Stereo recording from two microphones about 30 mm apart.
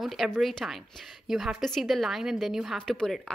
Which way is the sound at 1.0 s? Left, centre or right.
Centre.